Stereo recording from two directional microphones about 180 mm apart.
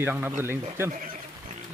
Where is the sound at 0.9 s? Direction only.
50° right (ahead or behind).